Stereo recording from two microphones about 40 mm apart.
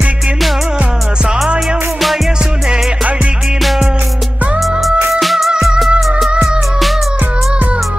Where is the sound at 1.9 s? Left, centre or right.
Centre.